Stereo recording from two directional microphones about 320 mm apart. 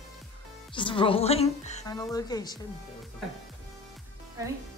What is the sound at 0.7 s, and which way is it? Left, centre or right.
A woman's voice, centre.